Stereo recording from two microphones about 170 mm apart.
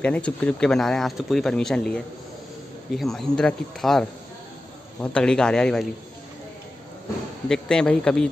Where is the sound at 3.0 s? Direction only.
Centre (ahead or behind).